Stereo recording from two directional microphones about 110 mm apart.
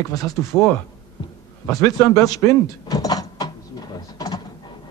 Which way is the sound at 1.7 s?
35° left (ahead or behind).